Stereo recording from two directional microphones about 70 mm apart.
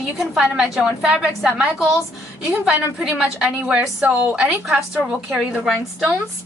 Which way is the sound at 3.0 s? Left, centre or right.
Centre.